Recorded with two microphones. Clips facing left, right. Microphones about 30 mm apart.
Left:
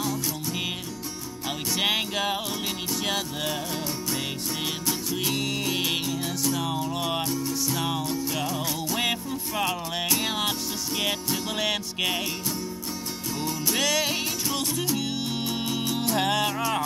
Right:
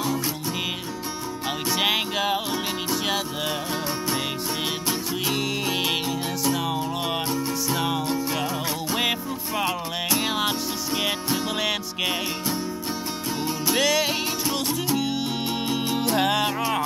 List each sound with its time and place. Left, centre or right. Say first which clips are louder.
1.7 s music: right 2 dB; centre
5.1 s music: right 1 dB; centre
7.2 s music: right 2 dB; right
9.6 s music: right 1 dB; centre
11.5 s music: right 1 dB; centre
13.7 s music: right 3 dB; centre
15.4 s music: right 2 dB; right
16.2 s music: right 1 dB; centre